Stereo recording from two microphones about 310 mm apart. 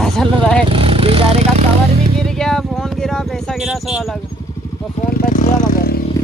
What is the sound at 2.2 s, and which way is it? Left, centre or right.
Speech, centre.